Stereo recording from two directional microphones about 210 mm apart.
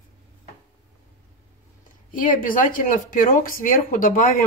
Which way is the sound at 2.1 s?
40° left (ahead or behind).